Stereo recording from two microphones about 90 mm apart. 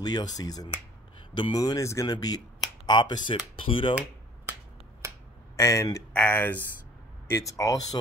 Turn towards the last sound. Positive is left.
turn(degrees=40)  # may be behind; listen again after turning